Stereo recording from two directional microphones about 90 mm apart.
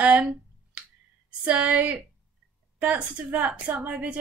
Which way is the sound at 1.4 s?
15° right (ahead or behind).